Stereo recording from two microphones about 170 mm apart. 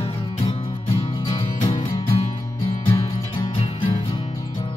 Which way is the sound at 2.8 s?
35° left (ahead or behind).